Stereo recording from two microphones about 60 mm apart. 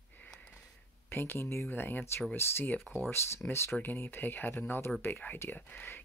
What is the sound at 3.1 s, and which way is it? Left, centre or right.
Speech, left.